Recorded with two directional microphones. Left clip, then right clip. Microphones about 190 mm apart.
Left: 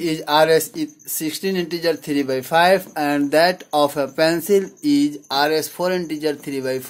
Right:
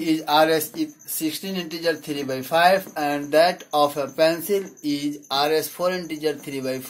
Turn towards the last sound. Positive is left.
turn(degrees=45)  # may be behind; listen again after turning